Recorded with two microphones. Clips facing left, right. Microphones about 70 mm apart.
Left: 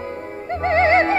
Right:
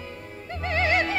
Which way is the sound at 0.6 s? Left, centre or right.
Left.